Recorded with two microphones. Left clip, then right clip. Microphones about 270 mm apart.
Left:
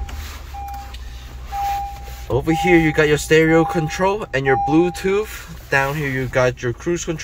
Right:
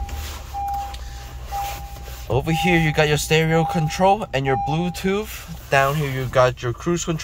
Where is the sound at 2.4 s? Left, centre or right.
Centre.